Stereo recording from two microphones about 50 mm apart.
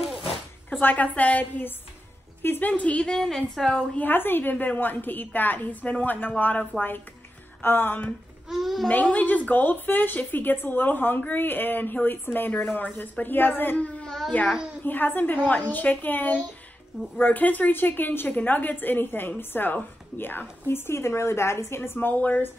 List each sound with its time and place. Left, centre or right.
0.7 s speech: left
2.4 s speech: left
2.7 s a woman's voice: left
3.1 s a woman's voice: centre
3.9 s speech: left
7.6 s speech: left
8.5 s a child's voice: centre
9.0 s speech: left
13.7 s a child's voice: left
21.9 s speech: left